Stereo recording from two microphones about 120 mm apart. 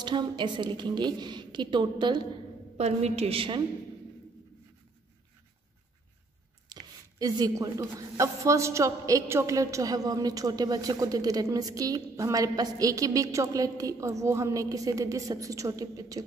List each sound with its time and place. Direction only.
0.0 s a woman's voice: 40° right (ahead or behind)
2.8 s a woman's voice: 65° right (ahead or behind); by 3.6 s 45° right (ahead or behind)
6.7 s a woman's voice: 35° right (ahead or behind)